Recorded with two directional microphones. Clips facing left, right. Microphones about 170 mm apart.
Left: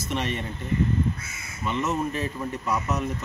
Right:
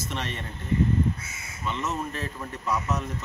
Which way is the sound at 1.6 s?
10° left (ahead or behind).